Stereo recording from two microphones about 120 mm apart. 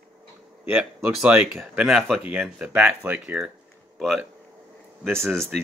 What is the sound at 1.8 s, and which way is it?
Speech, 5° right (ahead or behind).